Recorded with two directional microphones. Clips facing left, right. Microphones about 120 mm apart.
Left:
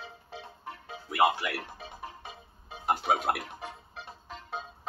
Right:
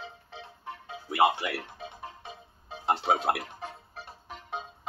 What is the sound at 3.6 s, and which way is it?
Music, 5° right (ahead or behind).